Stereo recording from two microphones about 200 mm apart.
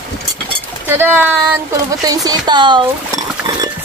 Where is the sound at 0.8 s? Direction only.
10° right (ahead or behind).